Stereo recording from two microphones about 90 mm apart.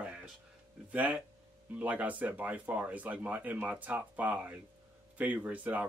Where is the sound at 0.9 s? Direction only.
20° right (ahead or behind).